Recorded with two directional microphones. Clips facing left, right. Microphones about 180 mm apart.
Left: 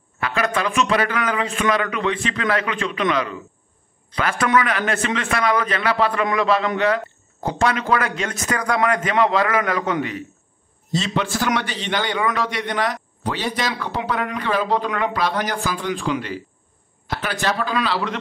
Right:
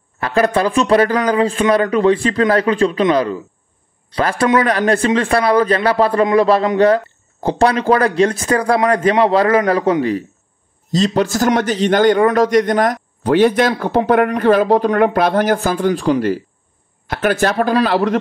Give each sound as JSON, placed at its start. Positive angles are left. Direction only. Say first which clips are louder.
{"t": 0.2, "sound": "a man's voice", "louder": "right 7 dB", "side_deg": -35}